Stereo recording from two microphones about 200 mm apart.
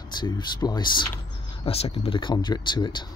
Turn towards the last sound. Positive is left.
turn(degrees=20)  # may be behind; listen again after turning